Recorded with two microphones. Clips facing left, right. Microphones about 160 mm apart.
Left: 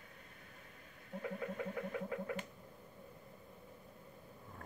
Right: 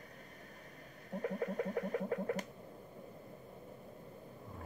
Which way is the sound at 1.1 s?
40° right (ahead or behind).